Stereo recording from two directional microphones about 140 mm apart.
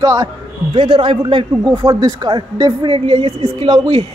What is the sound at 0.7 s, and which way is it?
Speech, 35° right (ahead or behind).